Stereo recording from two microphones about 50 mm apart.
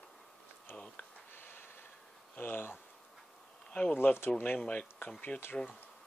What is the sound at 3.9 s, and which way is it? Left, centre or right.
Speech, left.